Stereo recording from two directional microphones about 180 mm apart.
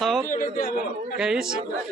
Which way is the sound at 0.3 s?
50° left (ahead or behind).